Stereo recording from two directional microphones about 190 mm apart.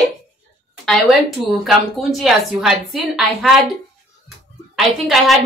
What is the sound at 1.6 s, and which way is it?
Speech, centre (ahead or behind).